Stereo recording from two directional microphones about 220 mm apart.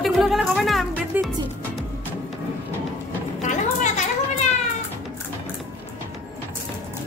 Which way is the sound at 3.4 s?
30° left (ahead or behind).